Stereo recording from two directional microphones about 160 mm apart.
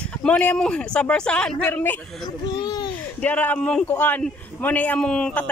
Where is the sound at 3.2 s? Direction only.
10° left (ahead or behind).